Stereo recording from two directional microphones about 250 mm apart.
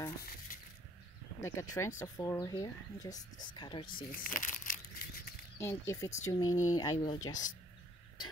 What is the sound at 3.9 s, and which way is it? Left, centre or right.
Tearing, left.